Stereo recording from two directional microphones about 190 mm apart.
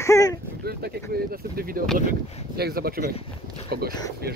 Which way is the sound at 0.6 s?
55° right (ahead or behind).